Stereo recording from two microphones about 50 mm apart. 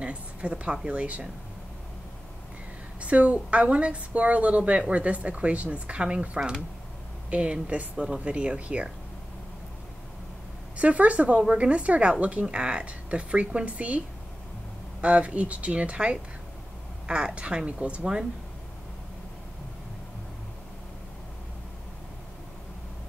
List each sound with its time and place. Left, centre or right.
0.0 s a woman's voice: right
3.0 s a woman's voice: right
10.8 s a woman's voice: right